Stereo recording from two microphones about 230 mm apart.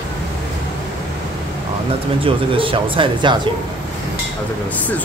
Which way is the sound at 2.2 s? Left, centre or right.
Right.